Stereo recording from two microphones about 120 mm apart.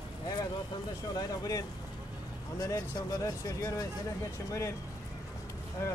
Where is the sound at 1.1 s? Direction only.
30° left (ahead or behind).